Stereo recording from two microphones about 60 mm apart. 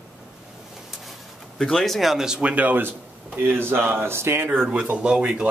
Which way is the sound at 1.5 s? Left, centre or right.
Centre.